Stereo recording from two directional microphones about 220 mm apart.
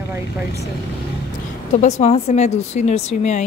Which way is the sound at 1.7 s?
30° left (ahead or behind).